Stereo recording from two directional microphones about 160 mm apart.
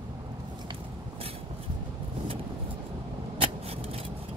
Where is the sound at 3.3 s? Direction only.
40° right (ahead or behind).